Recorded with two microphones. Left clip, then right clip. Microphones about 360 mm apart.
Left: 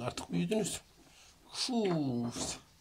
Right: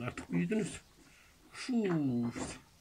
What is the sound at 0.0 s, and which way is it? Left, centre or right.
Speech, left.